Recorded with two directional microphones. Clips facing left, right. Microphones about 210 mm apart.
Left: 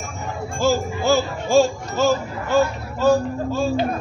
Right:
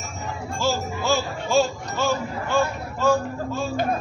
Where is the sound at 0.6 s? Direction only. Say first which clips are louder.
Left 5 dB; 50° left (ahead or behind).